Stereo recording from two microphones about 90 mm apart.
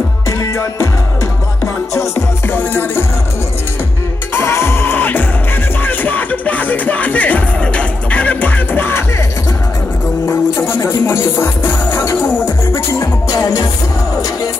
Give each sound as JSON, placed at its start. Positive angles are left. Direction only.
{"t": 0.3, "sound": "music", "side_deg": 35}
{"t": 2.0, "sound": "music", "side_deg": 25}
{"t": 4.3, "sound": "music", "side_deg": 30}
{"t": 10.2, "sound": "music", "side_deg": 25}